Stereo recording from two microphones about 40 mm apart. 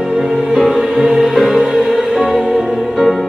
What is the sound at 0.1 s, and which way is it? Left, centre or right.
Music, centre.